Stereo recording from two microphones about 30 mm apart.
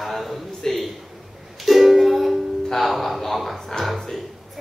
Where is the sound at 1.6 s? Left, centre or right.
Centre.